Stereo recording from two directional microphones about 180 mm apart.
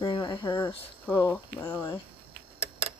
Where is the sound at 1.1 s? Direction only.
10° left (ahead or behind).